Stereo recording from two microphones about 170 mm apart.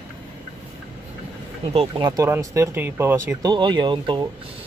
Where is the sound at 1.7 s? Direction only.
35° right (ahead or behind).